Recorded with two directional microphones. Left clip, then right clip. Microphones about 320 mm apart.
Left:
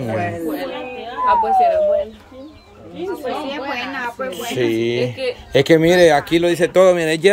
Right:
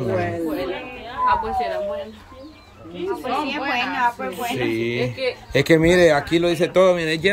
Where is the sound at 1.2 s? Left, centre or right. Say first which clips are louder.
Left 4 dB; centre.